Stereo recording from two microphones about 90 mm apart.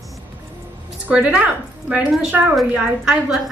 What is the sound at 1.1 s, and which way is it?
A woman's voice, 15° right (ahead or behind).